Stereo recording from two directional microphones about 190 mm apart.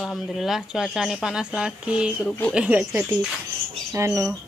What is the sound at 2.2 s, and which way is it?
Speech, 5° left (ahead or behind).